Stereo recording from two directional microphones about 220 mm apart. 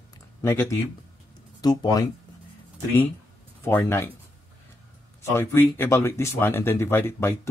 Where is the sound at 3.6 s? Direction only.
10° left (ahead or behind).